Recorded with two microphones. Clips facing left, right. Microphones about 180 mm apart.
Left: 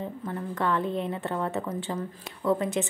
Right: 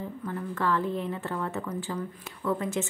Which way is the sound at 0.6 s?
20° left (ahead or behind).